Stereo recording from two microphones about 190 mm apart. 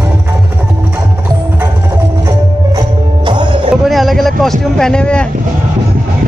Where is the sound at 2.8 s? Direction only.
25° right (ahead or behind).